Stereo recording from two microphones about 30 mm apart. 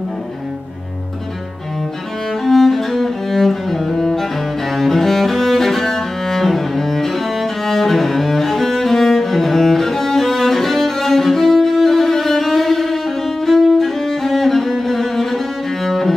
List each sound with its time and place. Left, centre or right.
2.4 s cello: centre